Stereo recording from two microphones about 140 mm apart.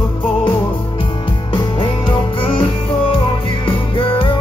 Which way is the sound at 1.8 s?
40° left (ahead or behind).